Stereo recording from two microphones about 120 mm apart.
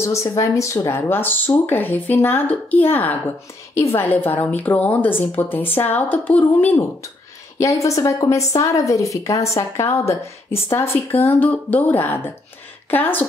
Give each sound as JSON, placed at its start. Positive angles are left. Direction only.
{"t": 0.0, "sound": "a woman's voice", "side_deg": 25}
{"t": 7.5, "sound": "a woman's voice", "side_deg": 25}